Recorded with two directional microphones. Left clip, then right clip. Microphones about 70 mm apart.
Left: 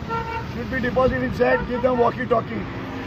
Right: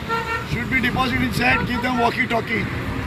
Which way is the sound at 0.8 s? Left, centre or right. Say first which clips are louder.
Left 1 dB; left.